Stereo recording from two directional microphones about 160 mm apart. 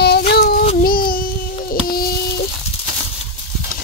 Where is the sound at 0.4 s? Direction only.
70° left (ahead or behind).